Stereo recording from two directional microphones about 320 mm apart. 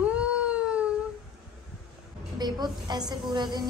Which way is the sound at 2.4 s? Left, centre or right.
Centre.